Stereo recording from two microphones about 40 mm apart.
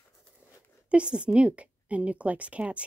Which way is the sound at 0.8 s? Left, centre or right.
Right.